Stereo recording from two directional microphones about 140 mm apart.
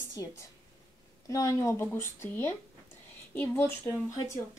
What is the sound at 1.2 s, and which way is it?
A woman's voice, 25° left (ahead or behind).